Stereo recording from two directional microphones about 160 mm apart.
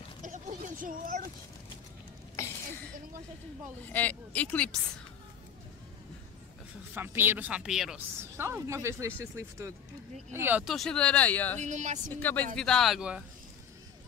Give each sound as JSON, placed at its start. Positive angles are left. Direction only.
{"t": 0.2, "sound": "a sound", "side_deg": -55}
{"t": 3.9, "sound": "speech", "side_deg": 10}
{"t": 6.9, "sound": "speech", "side_deg": -15}
{"t": 8.2, "sound": "speech", "side_deg": -15}
{"t": 10.6, "sound": "speech", "side_deg": 0}
{"t": 11.6, "sound": "speech", "side_deg": -50}
{"t": 12.1, "sound": "speech", "side_deg": 10}